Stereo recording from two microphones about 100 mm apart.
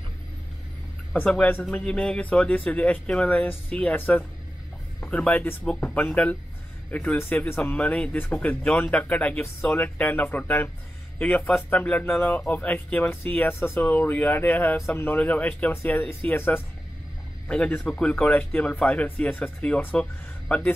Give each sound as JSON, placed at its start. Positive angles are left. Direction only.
{"t": 1.1, "sound": "speech", "side_deg": 15}
{"t": 17.5, "sound": "speech", "side_deg": 10}